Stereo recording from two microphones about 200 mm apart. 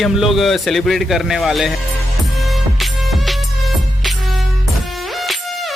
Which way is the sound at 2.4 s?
Centre (ahead or behind).